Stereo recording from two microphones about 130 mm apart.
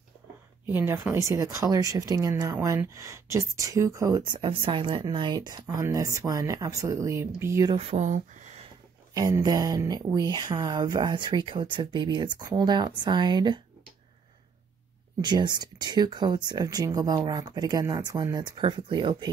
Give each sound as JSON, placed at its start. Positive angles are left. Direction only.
{"t": 0.7, "sound": "speech", "side_deg": -15}
{"t": 4.4, "sound": "speech", "side_deg": -40}
{"t": 7.7, "sound": "speech", "side_deg": -55}
{"t": 9.1, "sound": "speech", "side_deg": -30}
{"t": 15.2, "sound": "speech", "side_deg": -35}